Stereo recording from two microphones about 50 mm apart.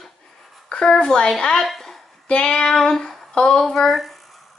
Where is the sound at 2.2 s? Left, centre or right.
Left.